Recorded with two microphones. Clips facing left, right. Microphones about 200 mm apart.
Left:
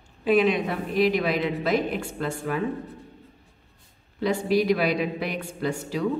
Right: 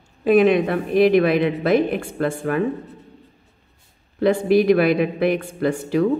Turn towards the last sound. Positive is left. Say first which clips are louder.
# right 7 dB
turn(degrees=-55)  # may be behind; listen again after turning